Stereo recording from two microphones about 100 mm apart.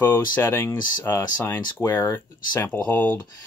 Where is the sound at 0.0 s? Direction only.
20° left (ahead or behind).